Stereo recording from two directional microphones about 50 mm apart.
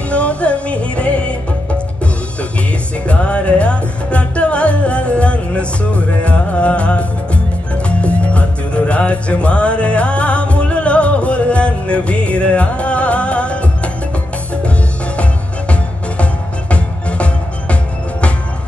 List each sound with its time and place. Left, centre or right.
0.1 s music: left
3.1 s music: left
15.7 s music: left